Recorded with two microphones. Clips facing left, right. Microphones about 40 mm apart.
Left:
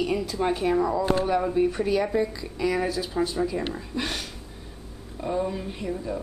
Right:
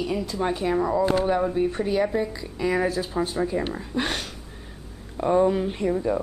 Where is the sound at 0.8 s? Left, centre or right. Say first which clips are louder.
Right 2 dB; centre.